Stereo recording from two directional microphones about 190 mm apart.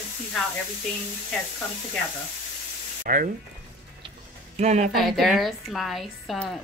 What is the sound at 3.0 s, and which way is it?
Ratchet, 45° right (ahead or behind).